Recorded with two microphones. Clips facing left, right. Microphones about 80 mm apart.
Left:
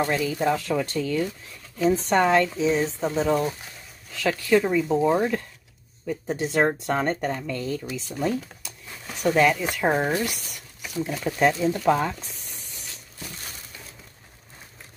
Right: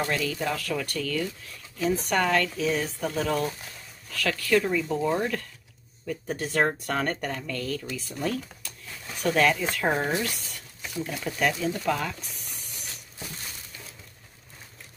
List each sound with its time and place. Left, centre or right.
0.1 s speech: left
10.4 s zipper: centre
11.2 s speech: left